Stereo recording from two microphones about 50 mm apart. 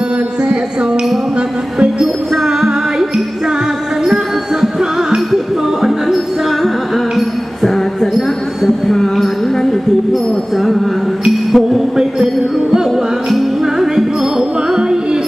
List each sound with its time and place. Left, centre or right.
0.4 s a sound: centre
1.8 s music: centre
7.2 s a sound: centre
8.8 s music: centre
11.5 s music: centre
14.7 s music: centre